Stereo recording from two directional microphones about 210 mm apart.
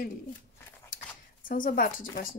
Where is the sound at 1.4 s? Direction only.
40° left (ahead or behind).